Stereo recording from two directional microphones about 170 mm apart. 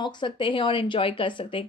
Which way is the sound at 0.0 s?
30° left (ahead or behind).